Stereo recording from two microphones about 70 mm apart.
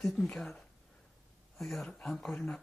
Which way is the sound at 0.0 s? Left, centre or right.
Centre.